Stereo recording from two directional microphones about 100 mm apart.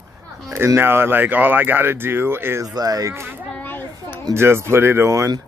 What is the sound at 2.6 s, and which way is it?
Speech, 40° right (ahead or behind).